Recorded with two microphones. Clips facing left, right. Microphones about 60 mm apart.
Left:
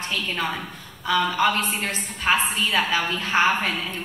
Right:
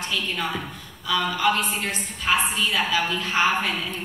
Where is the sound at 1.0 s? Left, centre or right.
Left.